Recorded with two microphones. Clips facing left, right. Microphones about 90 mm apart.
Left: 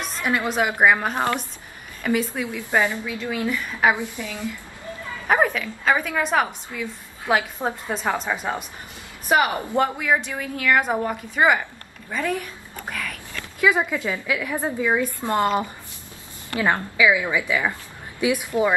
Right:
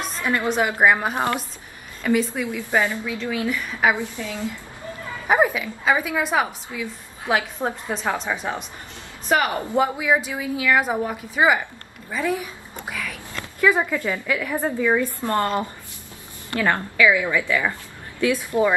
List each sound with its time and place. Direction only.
0.2 s a woman's voice: 15° left (ahead or behind)
0.8 s speech: 5° right (ahead or behind)
2.4 s a woman's voice: 15° left (ahead or behind)
5.3 s a woman's voice: 10° right (ahead or behind)
9.3 s a woman's voice: 15° left (ahead or behind)
9.7 s a woman's voice: 10° right (ahead or behind)
12.9 s a sound: centre (ahead or behind)
13.6 s a woman's voice: 10° left (ahead or behind)